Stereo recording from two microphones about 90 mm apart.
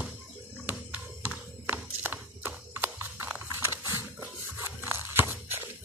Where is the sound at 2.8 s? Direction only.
25° right (ahead or behind).